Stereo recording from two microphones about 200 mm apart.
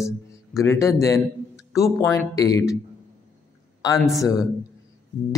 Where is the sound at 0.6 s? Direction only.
15° left (ahead or behind).